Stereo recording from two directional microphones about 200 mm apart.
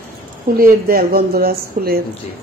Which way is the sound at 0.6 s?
45° right (ahead or behind).